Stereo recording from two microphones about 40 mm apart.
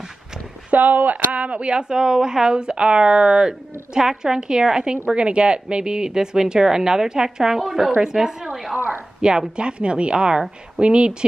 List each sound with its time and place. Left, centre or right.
0.7 s speech: right